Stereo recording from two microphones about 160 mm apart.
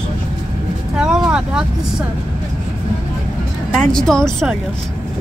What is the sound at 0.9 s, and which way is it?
Speech, 5° right (ahead or behind).